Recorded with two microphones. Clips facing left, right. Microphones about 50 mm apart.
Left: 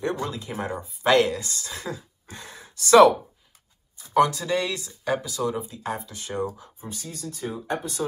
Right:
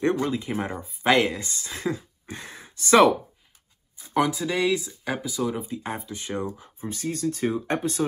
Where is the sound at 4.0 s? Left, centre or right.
Centre; by 8.1 s right.